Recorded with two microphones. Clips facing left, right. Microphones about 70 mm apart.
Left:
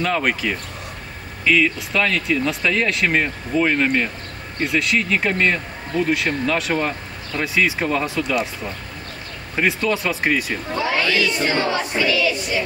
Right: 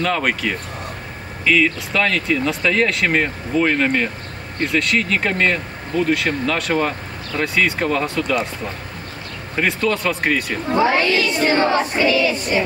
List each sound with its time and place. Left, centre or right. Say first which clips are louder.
0.0 s speech: right 1 dB; centre
9.6 s speech: right 1 dB; centre
10.8 s a sound: right 3 dB; right